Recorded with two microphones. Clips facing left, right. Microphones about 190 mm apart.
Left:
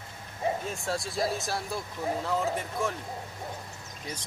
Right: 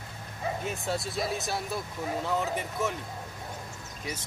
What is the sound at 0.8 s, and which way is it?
Speech, centre (ahead or behind).